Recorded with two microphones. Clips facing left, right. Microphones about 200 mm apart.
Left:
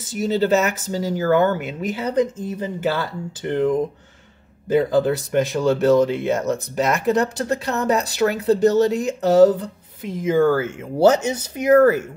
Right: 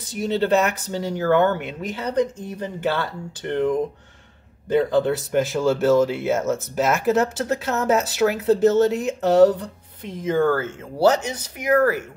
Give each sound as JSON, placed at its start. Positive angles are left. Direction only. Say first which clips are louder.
{"t": 0.0, "sound": "speech", "louder": "left 2 dB", "side_deg": 5}
{"t": 11.2, "sound": "speech", "louder": "left 5 dB", "side_deg": 25}